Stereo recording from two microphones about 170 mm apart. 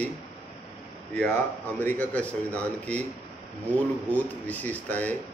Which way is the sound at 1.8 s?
10° left (ahead or behind).